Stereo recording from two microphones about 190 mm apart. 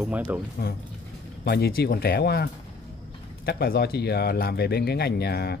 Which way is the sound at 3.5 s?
55° left (ahead or behind).